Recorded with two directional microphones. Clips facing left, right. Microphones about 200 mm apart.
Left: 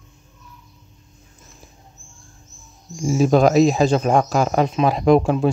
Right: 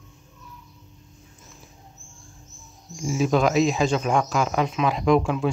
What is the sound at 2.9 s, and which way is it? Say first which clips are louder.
Speech: left 6 dB; 40° left (ahead or behind).